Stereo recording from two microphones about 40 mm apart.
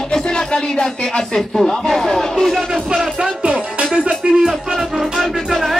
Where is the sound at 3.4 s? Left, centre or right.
Right.